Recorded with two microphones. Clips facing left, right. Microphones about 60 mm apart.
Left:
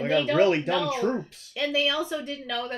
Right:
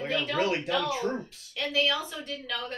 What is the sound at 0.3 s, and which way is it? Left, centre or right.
Speech, left.